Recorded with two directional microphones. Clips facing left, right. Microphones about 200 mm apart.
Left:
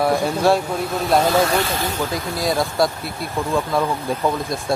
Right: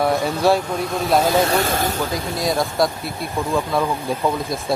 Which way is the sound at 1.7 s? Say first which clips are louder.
Right 3 dB; 50° right (ahead or behind).